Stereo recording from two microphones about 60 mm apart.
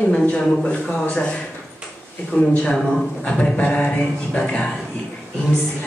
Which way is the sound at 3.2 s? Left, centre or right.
Centre.